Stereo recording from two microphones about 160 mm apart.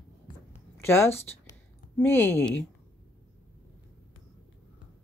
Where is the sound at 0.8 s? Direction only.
15° left (ahead or behind).